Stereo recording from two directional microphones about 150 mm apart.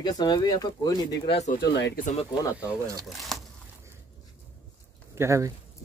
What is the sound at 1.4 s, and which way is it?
Speech, 60° left (ahead or behind).